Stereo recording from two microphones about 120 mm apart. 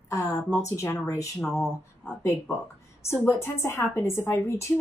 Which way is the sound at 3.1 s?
20° left (ahead or behind).